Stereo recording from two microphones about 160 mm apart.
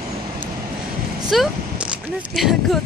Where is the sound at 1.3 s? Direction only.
5° right (ahead or behind).